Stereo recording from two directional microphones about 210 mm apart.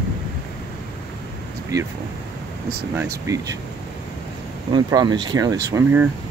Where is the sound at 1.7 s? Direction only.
15° right (ahead or behind).